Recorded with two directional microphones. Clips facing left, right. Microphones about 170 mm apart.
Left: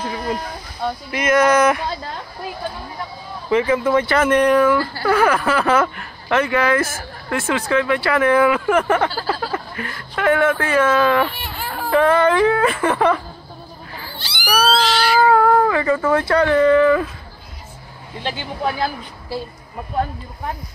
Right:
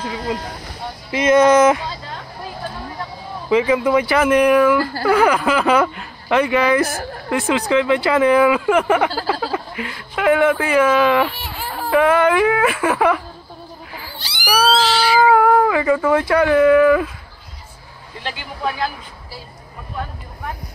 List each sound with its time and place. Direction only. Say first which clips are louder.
0.0 s speech: even; 50° left (ahead or behind)
1.1 s speech: right 4 dB; 25° right (ahead or behind)
3.4 s speech: right 1 dB; 15° right (ahead or behind)
14.4 s speech: right 1 dB; 10° right (ahead or behind)
18.2 s speech: left 2 dB; 30° left (ahead or behind)